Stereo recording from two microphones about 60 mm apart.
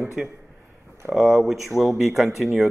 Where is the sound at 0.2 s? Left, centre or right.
Centre.